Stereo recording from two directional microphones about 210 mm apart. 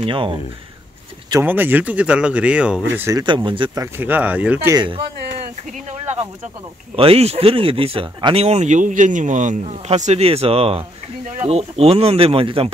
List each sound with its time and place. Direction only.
0.0 s speech: 25° right (ahead or behind)
1.3 s speech: 10° right (ahead or behind)
3.0 s speech: 15° right (ahead or behind)
4.7 s speech: 25° right (ahead or behind)
7.0 s speech: 30° right (ahead or behind)